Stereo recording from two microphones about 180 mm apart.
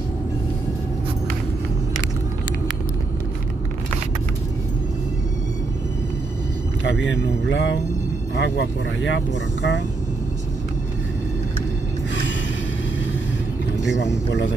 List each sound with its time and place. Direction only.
6.8 s speech: 90° left
13.9 s speech: 80° left